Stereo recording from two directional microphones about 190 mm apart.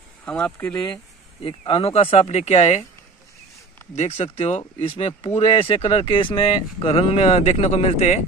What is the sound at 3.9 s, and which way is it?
Speech, 35° left (ahead or behind).